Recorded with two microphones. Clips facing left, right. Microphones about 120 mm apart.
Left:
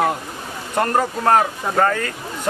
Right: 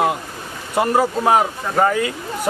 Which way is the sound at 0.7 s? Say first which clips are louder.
Right 2 dB; 5° right (ahead or behind).